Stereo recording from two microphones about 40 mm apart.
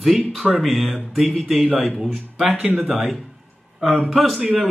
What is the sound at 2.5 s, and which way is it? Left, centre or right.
Speech, right.